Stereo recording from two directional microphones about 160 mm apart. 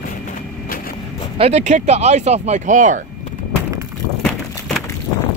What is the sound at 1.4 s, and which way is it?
Speech, 45° right (ahead or behind).